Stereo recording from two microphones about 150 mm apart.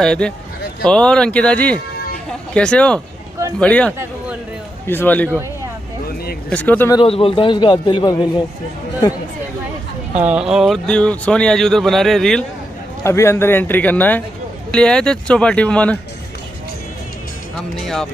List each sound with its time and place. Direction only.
0.0 s speech: 5° left (ahead or behind)
6.5 s speech: 10° left (ahead or behind)
7.1 s a man's voice: 40° left (ahead or behind)
10.1 s speech: 10° right (ahead or behind)
13.0 s speech: 20° left (ahead or behind)